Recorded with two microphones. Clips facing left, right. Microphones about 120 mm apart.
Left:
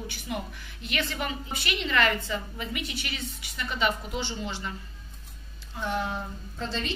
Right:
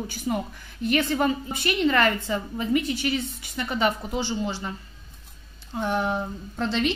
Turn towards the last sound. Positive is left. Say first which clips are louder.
# right 8 dB
turn(degrees=-70)  # may be behind; listen again after turning